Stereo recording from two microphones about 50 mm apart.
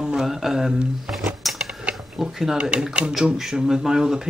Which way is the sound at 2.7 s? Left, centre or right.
Right.